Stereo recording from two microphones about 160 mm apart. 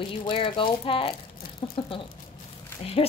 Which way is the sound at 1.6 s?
35° left (ahead or behind).